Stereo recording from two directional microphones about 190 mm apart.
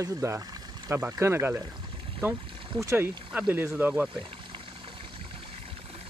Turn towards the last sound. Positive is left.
turn(degrees=-10)  # may be behind; listen again after turning